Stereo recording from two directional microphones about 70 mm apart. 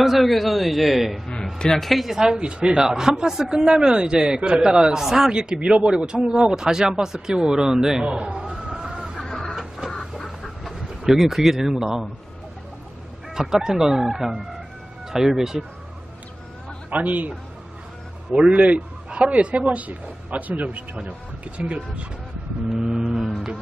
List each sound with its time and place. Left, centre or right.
0.0 s a man's voice: centre
1.3 s speech: centre
9.2 s chicken: centre
13.3 s speech: centre
16.9 s speech: right; by 23.3 s centre